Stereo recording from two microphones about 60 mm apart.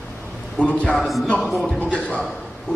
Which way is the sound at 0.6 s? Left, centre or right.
Left.